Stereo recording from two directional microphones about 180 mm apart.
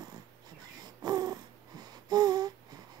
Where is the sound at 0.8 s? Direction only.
20° right (ahead or behind).